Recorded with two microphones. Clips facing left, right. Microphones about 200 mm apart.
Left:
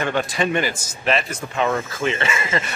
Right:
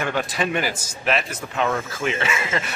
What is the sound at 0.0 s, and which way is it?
Speech, 5° right (ahead or behind).